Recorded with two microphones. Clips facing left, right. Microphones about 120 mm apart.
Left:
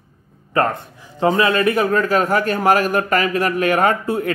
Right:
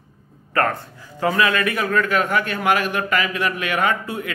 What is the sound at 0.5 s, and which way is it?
A man's voice, 20° left (ahead or behind).